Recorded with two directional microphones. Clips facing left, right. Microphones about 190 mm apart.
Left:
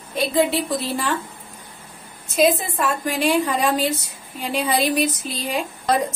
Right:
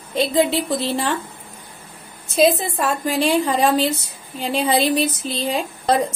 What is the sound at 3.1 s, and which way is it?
Speech, 30° right (ahead or behind).